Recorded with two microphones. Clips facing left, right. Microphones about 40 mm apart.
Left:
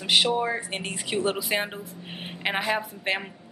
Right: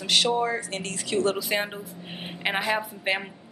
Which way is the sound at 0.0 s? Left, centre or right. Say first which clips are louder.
Even; centre.